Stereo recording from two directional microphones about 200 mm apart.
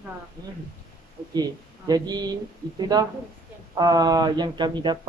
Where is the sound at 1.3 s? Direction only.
20° right (ahead or behind).